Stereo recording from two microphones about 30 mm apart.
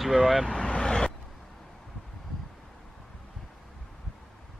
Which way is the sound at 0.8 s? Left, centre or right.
Left.